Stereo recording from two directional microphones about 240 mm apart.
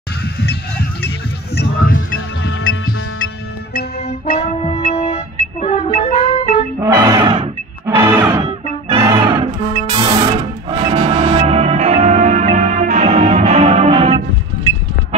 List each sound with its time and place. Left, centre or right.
0.2 s music: left
2.1 s music: left
4.4 s brass instrument: left
4.9 s music: left
6.8 s music: centre